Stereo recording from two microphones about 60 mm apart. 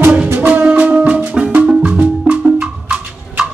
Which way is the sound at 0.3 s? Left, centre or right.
Right.